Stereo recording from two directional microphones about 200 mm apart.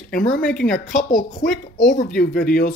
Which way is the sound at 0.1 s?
40° left (ahead or behind).